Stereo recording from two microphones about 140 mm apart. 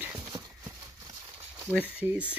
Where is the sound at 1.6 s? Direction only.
10° right (ahead or behind).